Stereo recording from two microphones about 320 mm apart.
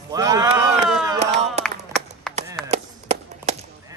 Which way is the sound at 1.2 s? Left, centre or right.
Centre.